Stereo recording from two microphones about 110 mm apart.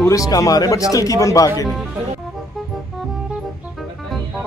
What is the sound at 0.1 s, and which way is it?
Speech, 30° left (ahead or behind).